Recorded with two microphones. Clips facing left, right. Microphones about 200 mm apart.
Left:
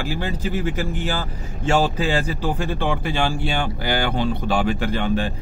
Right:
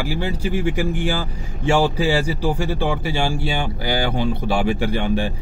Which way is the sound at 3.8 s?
55° left (ahead or behind).